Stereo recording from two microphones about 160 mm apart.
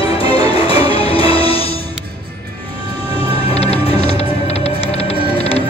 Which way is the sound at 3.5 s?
40° left (ahead or behind).